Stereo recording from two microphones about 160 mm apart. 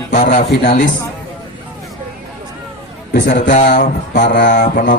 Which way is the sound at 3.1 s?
55° left (ahead or behind).